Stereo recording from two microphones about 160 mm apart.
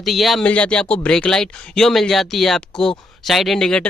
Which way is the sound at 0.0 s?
Centre (ahead or behind).